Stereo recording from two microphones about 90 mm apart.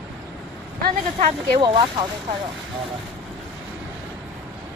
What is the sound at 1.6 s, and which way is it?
Speech, 70° right (ahead or behind).